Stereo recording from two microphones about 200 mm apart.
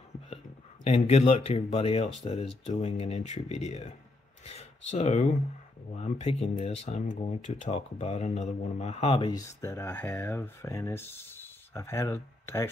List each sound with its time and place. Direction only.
0.8 s speech: 30° left (ahead or behind)
9.3 s speech: 15° left (ahead or behind)